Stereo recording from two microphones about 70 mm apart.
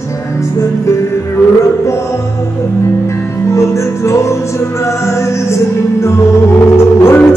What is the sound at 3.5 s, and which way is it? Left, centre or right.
Music, left.